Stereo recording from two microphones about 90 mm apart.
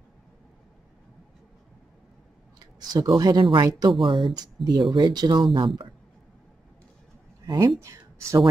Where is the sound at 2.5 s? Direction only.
50° right (ahead or behind).